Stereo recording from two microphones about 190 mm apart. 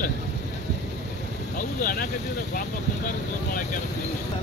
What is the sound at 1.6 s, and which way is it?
Speech, 45° left (ahead or behind).